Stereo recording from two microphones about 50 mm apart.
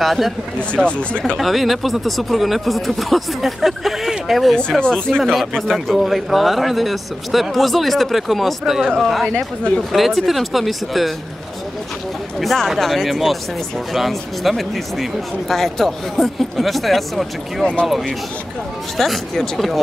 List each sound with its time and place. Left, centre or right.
0.0 s speech: centre
0.6 s speech: left
1.4 s speech: centre
4.6 s speech: centre
5.2 s speech: centre
9.9 s speech: centre
12.4 s speech: centre